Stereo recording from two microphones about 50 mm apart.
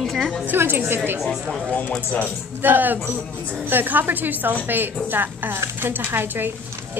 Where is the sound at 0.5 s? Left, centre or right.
Right.